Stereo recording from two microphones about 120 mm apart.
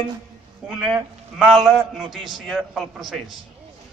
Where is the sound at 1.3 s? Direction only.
Centre (ahead or behind).